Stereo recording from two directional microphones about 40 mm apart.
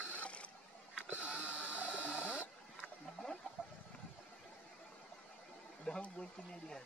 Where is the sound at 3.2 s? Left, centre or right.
Left.